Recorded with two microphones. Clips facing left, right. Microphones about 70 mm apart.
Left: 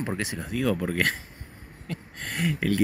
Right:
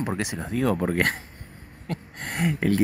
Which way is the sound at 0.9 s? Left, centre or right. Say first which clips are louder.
Right 2 dB; right.